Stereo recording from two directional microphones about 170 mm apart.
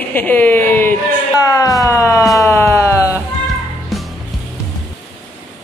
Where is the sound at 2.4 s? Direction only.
20° left (ahead or behind).